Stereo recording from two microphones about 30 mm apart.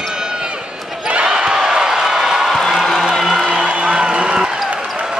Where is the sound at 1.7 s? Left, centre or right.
Centre.